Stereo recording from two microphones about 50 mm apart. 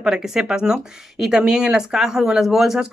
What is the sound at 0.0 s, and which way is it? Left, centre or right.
Speech, centre.